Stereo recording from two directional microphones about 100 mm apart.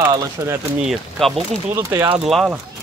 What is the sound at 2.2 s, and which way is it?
Speech, centre (ahead or behind).